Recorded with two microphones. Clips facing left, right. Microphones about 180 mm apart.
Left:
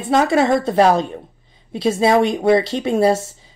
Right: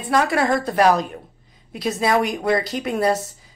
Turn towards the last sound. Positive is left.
turn(degrees=25)  # may be behind; listen again after turning